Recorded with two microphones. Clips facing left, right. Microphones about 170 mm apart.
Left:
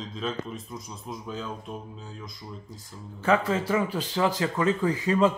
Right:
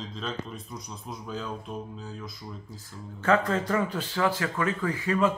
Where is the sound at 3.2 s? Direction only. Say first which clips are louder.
Even; 10° left (ahead or behind).